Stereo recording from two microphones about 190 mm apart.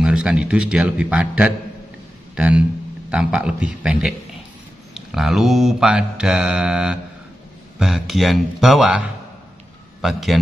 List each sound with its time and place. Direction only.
0.0 s mantra: 5° right (ahead or behind)
2.3 s speech: 5° right (ahead or behind)
3.1 s mantra: 5° right (ahead or behind)